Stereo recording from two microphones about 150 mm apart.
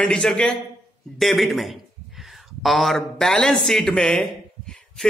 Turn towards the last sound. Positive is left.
turn(degrees=5)  # may be behind; listen again after turning